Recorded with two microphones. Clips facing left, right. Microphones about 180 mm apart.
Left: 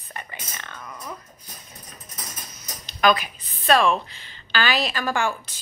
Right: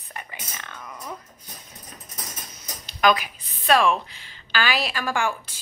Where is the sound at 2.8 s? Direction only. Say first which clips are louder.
Even; 10° right (ahead or behind).